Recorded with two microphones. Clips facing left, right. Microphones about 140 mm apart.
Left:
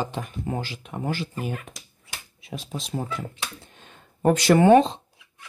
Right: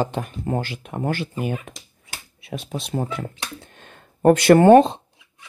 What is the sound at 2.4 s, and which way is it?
Speech, 60° right (ahead or behind).